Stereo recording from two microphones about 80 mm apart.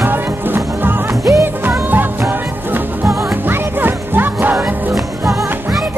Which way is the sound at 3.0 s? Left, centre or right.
Right.